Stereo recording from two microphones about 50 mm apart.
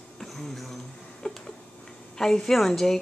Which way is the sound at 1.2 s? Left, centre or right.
Centre.